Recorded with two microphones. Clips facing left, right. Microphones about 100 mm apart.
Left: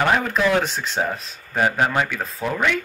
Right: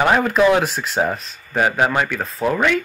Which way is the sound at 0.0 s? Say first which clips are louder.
Right 4 dB; 10° right (ahead or behind).